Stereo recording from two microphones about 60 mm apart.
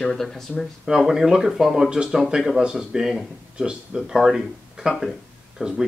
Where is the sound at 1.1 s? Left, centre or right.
Centre.